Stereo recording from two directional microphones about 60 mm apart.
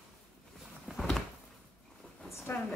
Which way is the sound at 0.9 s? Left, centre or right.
Centre.